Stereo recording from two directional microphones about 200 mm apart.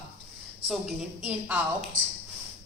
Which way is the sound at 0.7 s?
5° right (ahead or behind).